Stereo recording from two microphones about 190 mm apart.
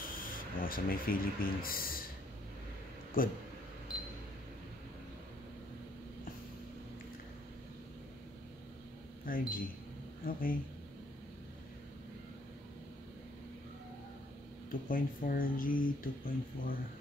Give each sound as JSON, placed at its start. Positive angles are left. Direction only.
{"t": 0.0, "sound": "speech", "side_deg": 45}
{"t": 3.2, "sound": "speech", "side_deg": 45}
{"t": 9.2, "sound": "speech", "side_deg": 50}
{"t": 14.7, "sound": "speech", "side_deg": 45}